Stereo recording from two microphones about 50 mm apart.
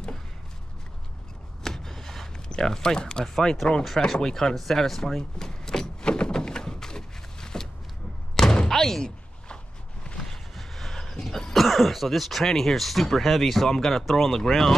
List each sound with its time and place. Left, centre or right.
1.6 s a sound: centre
3.3 s speech: centre
4.0 s power windows: centre
8.4 s thunk: centre
10.0 s throat clearing: centre